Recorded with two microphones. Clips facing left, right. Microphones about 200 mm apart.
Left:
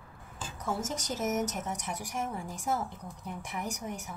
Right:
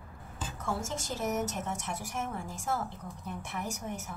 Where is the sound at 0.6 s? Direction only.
15° left (ahead or behind).